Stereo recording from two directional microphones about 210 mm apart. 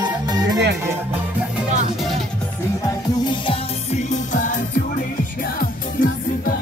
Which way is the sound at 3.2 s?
30° left (ahead or behind).